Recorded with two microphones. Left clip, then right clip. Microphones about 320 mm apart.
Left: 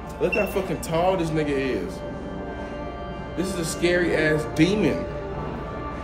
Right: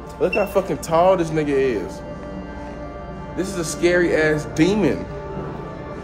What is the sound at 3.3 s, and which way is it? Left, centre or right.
Speech, centre.